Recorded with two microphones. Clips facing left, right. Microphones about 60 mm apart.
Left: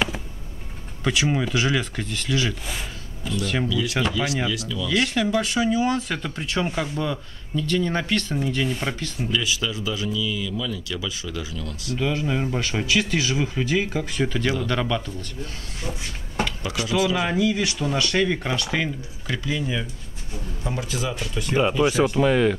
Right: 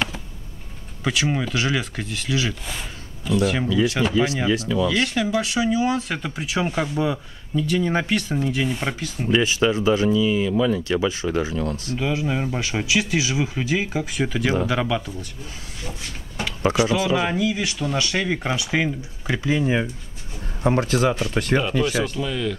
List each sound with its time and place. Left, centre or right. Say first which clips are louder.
1.0 s speech: even; centre
3.6 s speech: right 3 dB; right
4.8 s speech: right 1 dB; centre
9.3 s speech: right 8 dB; right
12.0 s speech: even; centre
16.9 s speech: right 1 dB; right
17.3 s speech: left 1 dB; centre
19.2 s speech: right 5 dB; right
20.6 s speech: right 9 dB; right
22.1 s speech: left 7 dB; left